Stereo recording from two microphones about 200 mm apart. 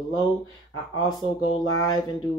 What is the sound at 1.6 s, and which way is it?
Speech, 90° left.